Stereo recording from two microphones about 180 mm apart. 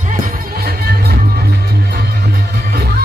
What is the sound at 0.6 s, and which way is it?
Music, 60° right (ahead or behind).